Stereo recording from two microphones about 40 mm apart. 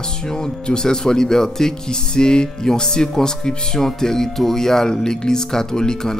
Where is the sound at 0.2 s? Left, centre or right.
Centre.